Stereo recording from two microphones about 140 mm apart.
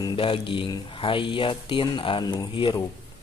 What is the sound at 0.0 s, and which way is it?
A man's voice, 35° left (ahead or behind).